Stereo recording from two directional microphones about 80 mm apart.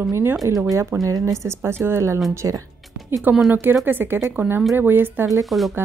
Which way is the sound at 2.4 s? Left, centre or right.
Right.